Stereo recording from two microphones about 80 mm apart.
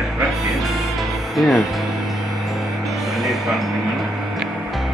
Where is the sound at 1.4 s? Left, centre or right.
Centre.